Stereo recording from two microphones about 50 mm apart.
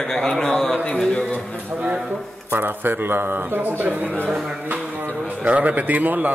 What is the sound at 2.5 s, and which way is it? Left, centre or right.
A man's voice, right.